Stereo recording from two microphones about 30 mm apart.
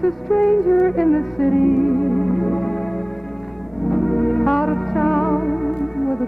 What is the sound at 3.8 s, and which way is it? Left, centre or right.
Music, centre.